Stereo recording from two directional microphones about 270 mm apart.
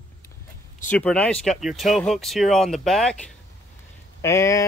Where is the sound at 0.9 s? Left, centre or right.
Centre.